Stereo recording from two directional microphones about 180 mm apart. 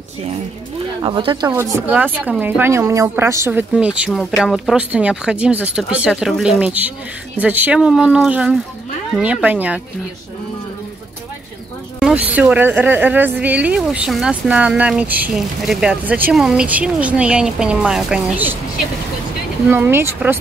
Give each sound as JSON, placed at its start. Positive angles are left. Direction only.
{"t": 1.0, "sound": "speech", "side_deg": -25}
{"t": 1.5, "sound": "speech", "side_deg": -10}
{"t": 12.4, "sound": "speech", "side_deg": -10}
{"t": 19.7, "sound": "speech", "side_deg": -15}